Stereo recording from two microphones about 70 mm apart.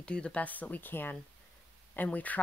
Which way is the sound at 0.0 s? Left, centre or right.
Centre.